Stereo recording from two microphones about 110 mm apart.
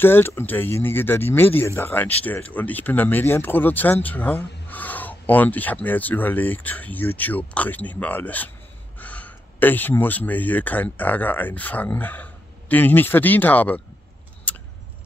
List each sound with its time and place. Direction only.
0.0 s speech: 20° left (ahead or behind)